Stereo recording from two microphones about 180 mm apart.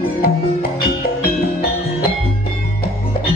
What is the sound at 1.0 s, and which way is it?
Music, 55° left (ahead or behind).